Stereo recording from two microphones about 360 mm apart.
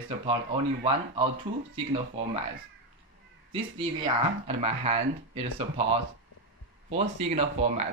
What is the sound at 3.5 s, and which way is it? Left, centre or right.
Speech, centre.